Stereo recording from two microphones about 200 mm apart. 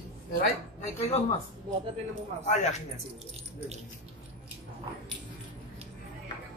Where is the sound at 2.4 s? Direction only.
35° left (ahead or behind).